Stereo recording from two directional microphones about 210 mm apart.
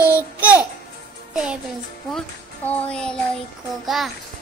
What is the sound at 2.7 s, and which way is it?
Speech, 5° left (ahead or behind).